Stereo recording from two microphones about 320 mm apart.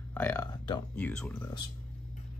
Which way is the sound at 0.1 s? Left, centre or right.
Centre.